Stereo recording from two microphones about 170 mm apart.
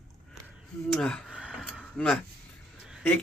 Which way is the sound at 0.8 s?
5° left (ahead or behind).